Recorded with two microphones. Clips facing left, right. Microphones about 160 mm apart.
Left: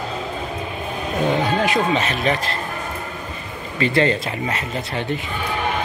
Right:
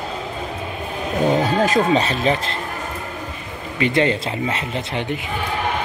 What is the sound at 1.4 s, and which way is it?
Speech, 40° right (ahead or behind).